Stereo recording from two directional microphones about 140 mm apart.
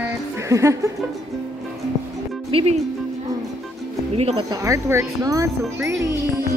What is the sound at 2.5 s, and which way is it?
Speech, 40° right (ahead or behind).